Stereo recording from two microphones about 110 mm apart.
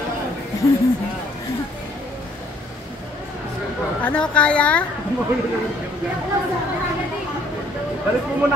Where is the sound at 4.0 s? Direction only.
10° left (ahead or behind).